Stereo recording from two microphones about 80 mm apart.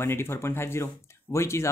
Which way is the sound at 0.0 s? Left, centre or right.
Left.